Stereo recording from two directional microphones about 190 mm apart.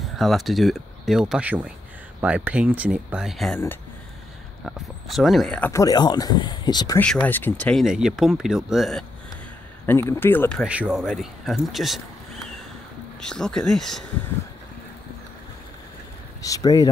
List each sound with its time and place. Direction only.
0.0 s speech: centre (ahead or behind)
4.6 s speech: centre (ahead or behind); by 7.0 s 20° left (ahead or behind)
7.0 s speech: 5° left (ahead or behind)
9.8 s speech: 15° left (ahead or behind)
10.6 s speech: 5° right (ahead or behind)
13.2 s speech: 5° left (ahead or behind)
16.4 s speech: 20° left (ahead or behind)